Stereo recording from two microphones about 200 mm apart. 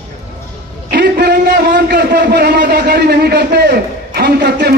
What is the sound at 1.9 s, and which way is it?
A man's voice, 55° right (ahead or behind).